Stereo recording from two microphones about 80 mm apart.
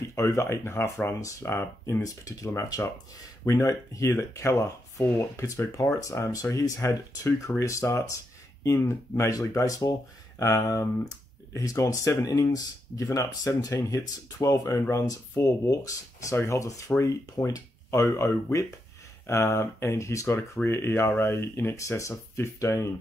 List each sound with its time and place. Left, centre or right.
0.0 s speech: left
2.2 s speech: left
6.4 s speech: left